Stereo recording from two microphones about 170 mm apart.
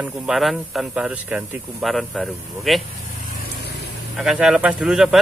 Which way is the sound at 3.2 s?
70° left (ahead or behind).